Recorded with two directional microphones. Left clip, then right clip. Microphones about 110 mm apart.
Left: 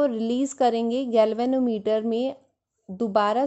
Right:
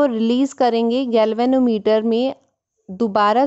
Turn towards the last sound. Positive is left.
turn(degrees=-30)  # may be behind; listen again after turning